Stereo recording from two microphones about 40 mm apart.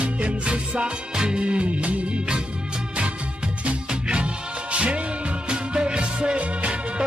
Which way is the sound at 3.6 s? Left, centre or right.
Right.